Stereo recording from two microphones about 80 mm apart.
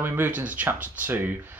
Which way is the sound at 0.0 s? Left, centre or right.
Right.